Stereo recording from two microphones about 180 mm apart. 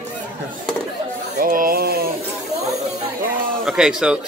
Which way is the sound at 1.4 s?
50° right (ahead or behind).